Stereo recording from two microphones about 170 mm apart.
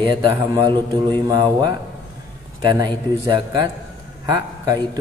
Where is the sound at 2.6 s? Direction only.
25° right (ahead or behind).